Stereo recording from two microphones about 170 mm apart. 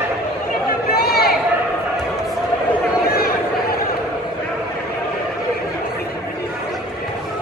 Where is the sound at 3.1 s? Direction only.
65° left (ahead or behind).